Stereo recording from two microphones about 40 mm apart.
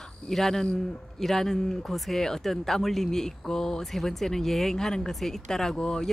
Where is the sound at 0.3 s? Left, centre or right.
Centre.